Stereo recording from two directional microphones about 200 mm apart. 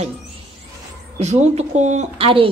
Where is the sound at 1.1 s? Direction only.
35° right (ahead or behind).